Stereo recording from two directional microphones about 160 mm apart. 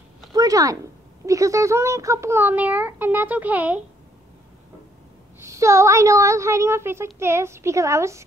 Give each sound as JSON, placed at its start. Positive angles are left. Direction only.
{"t": 0.3, "sound": "a child's voice", "side_deg": -20}
{"t": 5.4, "sound": "a woman's voice", "side_deg": -20}